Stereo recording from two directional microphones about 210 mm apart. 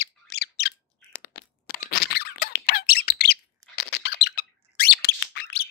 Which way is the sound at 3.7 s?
50° left (ahead or behind).